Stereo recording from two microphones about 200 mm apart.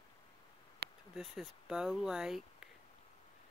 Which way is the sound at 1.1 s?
Centre (ahead or behind).